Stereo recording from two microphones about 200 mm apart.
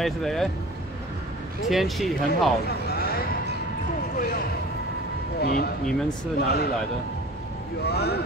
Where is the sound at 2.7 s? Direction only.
50° left (ahead or behind).